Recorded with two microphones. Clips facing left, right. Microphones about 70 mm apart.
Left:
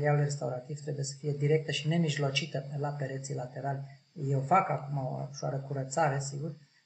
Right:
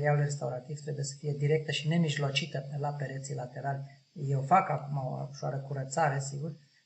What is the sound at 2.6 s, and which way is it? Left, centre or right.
Speech, left.